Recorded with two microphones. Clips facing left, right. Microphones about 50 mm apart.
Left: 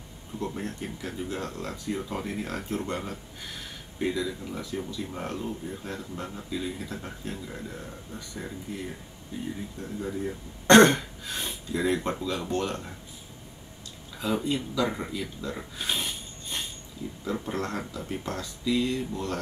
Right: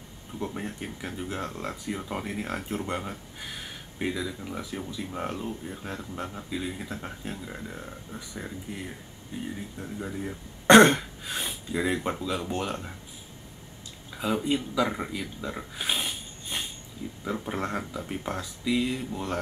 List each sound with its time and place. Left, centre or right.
0.4 s speech: centre
9.3 s speech: right
9.8 s speech: centre
14.1 s speech: centre